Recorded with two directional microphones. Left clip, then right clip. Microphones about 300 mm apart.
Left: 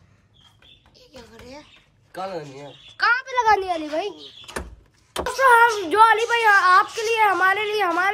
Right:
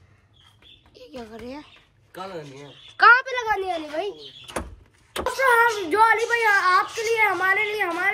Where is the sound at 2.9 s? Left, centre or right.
Centre.